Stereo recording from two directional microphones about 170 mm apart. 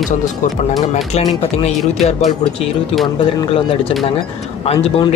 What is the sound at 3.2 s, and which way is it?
Speech, 30° left (ahead or behind).